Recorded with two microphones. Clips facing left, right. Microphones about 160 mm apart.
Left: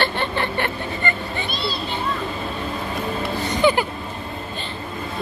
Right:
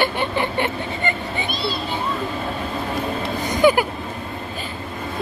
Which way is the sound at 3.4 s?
10° right (ahead or behind).